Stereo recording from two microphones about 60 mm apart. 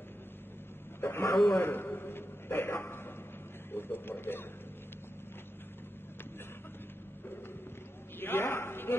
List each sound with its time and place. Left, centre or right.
1.0 s a man's voice: left
8.2 s speech: left